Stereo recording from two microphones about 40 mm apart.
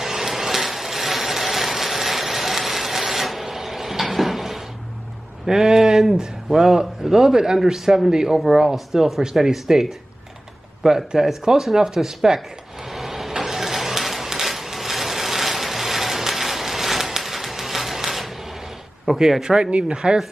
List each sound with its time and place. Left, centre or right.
0.0 s ratchet: centre
5.5 s speech: centre
12.9 s vehicle: centre
19.0 s speech: centre